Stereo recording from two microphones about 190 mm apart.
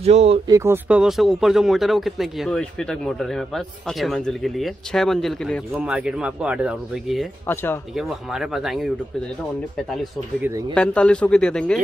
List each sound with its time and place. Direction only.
0.0 s speech: 35° right (ahead or behind)
0.5 s speech: 15° right (ahead or behind)
7.4 s speech: 10° left (ahead or behind)
7.9 s speech: centre (ahead or behind)
10.7 s speech: 5° left (ahead or behind)